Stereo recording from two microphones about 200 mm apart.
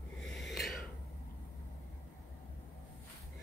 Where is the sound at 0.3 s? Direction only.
Centre (ahead or behind).